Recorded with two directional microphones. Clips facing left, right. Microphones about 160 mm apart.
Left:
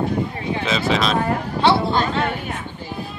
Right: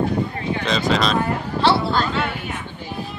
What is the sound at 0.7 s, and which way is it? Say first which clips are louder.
Speech: even; 5° left (ahead or behind).